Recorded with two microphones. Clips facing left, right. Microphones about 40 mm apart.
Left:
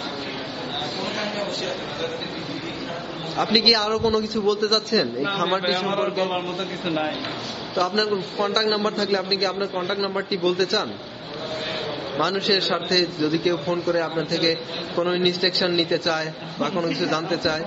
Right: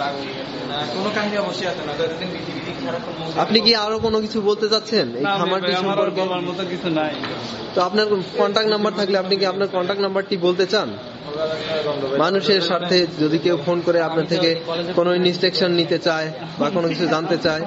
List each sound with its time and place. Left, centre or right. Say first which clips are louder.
1.0 s a man's voice: right 7 dB; centre
3.3 s a man's voice: right 2 dB; centre